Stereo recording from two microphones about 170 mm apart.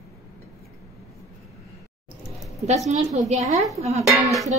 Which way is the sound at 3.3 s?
45° right (ahead or behind).